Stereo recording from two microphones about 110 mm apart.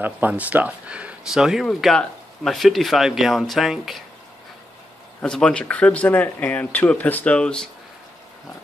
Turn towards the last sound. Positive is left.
turn(degrees=5)  # may be behind; listen again after turning